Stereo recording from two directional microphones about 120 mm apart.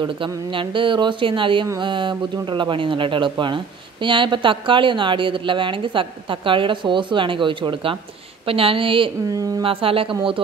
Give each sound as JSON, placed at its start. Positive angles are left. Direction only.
{"t": 0.5, "sound": "speech", "side_deg": -45}
{"t": 9.3, "sound": "a woman's voice", "side_deg": -30}
{"t": 9.6, "sound": "speech", "side_deg": -50}